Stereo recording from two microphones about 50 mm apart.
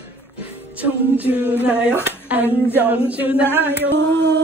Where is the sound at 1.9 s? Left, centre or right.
Left.